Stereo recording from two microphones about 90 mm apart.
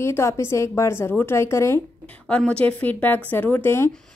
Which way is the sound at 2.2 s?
10° left (ahead or behind).